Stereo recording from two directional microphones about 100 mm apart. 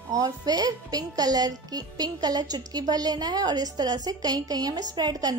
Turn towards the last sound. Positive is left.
turn(degrees=-40)  # may be behind; listen again after turning